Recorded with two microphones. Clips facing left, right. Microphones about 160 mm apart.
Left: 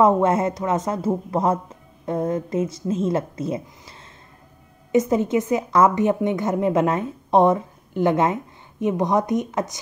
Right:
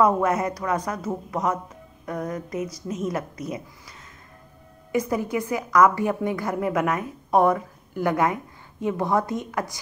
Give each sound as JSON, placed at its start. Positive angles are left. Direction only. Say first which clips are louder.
{"t": 0.0, "sound": "a woman's voice", "louder": "left 3 dB", "side_deg": 25}
{"t": 4.9, "sound": "a woman's voice", "louder": "left 6 dB", "side_deg": 25}